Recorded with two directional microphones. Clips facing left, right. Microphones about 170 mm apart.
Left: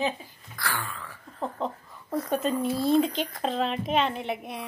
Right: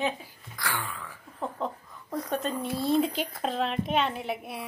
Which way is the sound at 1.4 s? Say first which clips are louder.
Left 1 dB; 5° left (ahead or behind).